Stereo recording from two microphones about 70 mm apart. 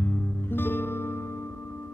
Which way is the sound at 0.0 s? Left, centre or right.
Left.